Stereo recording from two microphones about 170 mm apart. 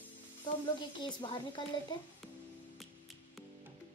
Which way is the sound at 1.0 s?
30° left (ahead or behind).